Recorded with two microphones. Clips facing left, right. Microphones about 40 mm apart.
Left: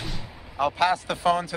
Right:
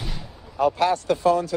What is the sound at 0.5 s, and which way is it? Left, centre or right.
Speech, centre.